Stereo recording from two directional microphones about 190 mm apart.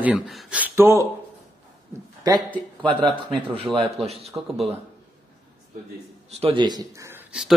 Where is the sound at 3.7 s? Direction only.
10° right (ahead or behind).